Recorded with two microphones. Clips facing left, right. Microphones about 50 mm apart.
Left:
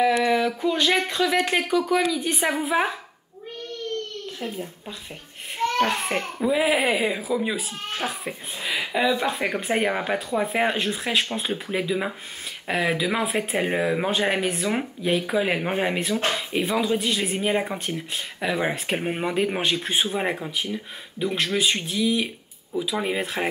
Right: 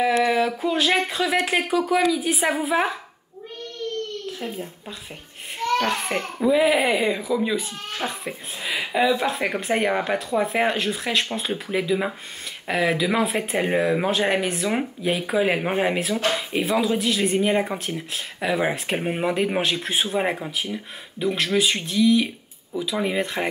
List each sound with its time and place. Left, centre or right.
0.2 s speech: centre
5.6 s a sound: left
5.9 s speech: centre